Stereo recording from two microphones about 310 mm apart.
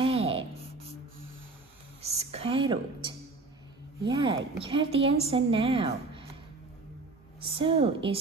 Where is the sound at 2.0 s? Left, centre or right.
Centre.